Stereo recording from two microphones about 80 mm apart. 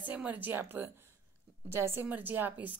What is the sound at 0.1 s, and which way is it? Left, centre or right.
Speech, centre.